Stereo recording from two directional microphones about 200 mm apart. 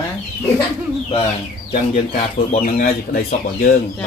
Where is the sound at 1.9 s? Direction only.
40° left (ahead or behind).